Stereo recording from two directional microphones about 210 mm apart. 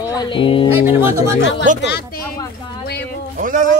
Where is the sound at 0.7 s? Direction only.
10° right (ahead or behind).